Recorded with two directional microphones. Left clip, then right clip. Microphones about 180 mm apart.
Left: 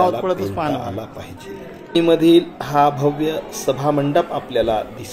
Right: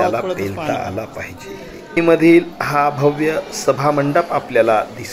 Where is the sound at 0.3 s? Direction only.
15° left (ahead or behind).